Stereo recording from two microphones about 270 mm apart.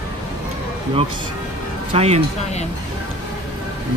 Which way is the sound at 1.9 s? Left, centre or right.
Right.